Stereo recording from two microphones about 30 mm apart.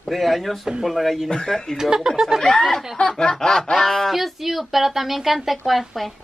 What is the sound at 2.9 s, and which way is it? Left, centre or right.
Speech, left.